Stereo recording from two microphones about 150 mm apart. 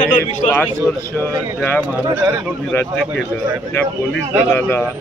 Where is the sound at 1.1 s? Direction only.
15° left (ahead or behind).